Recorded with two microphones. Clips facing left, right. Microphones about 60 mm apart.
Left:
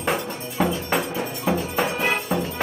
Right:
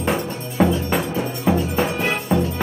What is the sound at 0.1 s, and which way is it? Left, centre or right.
Music, centre.